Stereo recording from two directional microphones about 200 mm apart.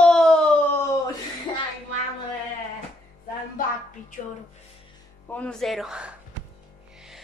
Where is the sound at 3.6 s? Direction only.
45° left (ahead or behind).